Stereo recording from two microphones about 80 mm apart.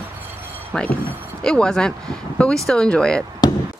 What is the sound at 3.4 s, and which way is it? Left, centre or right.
Basketball bounce, left.